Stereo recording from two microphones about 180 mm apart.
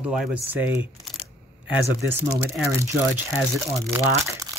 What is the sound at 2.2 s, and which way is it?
Speech, 15° right (ahead or behind).